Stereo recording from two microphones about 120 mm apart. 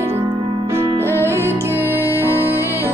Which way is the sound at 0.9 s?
20° left (ahead or behind).